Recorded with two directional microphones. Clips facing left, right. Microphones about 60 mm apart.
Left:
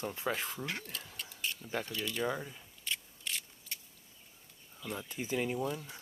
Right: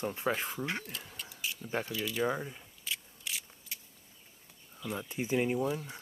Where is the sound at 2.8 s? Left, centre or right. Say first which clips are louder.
Left 1 dB; centre.